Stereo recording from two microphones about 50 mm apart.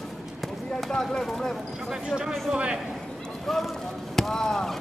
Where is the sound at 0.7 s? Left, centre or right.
Centre.